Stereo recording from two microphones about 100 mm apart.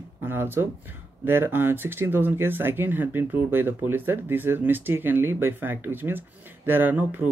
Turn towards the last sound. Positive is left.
turn(degrees=-20)  # may be behind; listen again after turning